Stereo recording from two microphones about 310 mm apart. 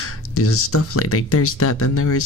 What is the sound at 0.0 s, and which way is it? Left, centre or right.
Speech, left.